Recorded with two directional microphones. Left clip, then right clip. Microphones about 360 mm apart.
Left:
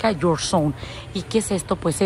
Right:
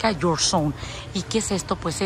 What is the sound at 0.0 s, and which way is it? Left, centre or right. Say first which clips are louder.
A woman's voice: left 1 dB; centre.